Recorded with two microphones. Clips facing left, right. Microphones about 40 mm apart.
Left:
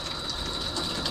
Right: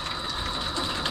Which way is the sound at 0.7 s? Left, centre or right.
Right.